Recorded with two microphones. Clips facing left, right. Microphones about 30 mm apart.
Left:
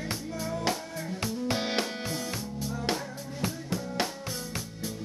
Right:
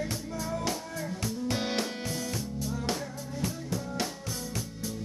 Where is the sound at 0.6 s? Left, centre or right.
Left.